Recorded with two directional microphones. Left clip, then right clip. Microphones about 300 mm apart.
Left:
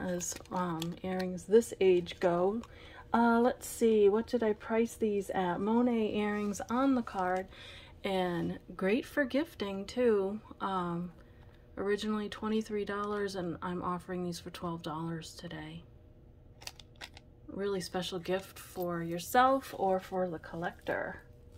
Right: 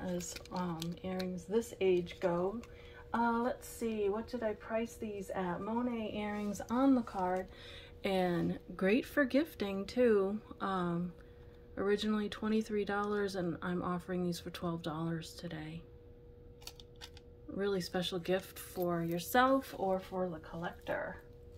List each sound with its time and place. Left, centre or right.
0.0 s a woman's voice: centre
17.6 s a woman's voice: centre